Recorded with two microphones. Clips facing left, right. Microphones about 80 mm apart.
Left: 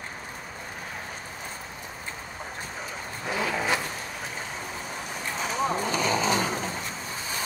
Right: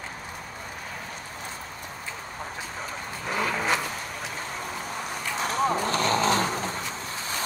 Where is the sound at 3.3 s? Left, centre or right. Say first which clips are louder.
Right 1 dB; right.